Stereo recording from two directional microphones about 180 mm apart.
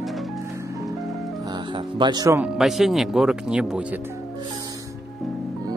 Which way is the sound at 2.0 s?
25° right (ahead or behind).